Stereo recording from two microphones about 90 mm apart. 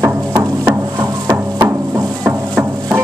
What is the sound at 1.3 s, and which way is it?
Music, 25° right (ahead or behind).